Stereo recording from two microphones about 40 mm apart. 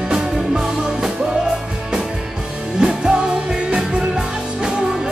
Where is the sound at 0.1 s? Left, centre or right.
Centre.